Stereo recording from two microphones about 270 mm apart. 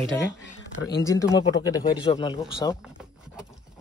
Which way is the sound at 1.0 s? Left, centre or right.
Centre.